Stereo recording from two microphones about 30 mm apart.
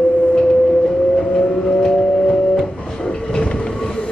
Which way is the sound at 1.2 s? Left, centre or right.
Left.